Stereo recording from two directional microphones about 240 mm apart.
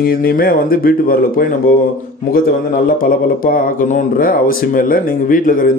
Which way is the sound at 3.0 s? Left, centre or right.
Left.